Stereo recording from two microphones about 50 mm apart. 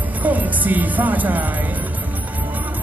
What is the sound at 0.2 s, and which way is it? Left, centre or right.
Speech, right.